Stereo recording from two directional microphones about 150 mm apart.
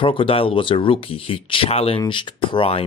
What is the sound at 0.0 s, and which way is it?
Speech, 35° left (ahead or behind).